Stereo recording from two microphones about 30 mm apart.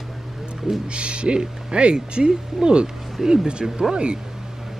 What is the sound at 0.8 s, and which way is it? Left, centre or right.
Speech, right.